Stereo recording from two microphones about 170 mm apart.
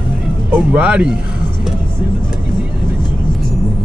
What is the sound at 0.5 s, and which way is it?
Speech, 5° right (ahead or behind).